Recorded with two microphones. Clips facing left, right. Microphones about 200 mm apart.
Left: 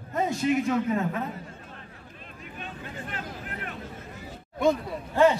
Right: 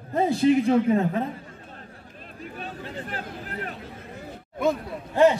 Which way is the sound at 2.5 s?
35° right (ahead or behind).